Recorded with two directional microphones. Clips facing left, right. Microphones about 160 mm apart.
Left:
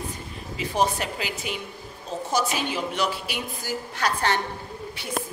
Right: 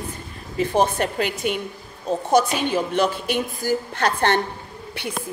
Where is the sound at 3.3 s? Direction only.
55° right (ahead or behind).